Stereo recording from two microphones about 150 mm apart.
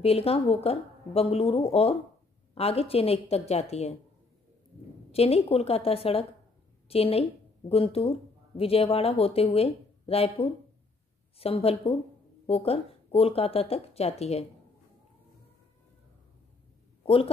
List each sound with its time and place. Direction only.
0.0 s speech: 40° left (ahead or behind)
5.1 s a woman's voice: 40° left (ahead or behind)
17.0 s speech: 40° left (ahead or behind)